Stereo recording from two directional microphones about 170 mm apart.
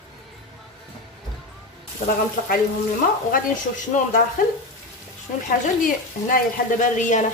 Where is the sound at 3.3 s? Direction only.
50° left (ahead or behind).